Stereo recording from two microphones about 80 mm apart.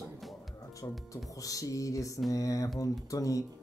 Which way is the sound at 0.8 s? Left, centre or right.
Left.